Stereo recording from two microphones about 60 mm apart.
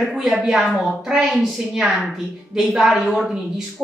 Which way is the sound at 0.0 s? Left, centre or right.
Centre.